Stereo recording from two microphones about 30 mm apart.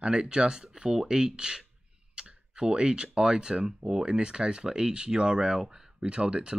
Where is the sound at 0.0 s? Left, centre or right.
Right.